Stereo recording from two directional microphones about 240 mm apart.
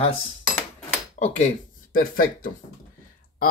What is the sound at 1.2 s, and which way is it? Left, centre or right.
A man's voice, left.